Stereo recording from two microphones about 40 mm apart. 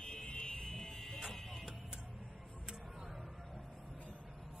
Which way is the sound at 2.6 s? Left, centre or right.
Centre.